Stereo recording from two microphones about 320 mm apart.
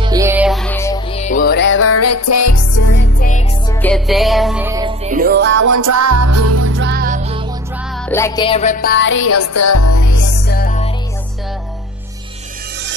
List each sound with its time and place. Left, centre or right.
0.0 s music: centre; by 2.9 s left
2.9 s music: left
3.8 s music: centre; by 5.7 s right
5.7 s music: right; by 7.4 s centre
8.1 s music: centre; by 10.2 s left
10.2 s music: left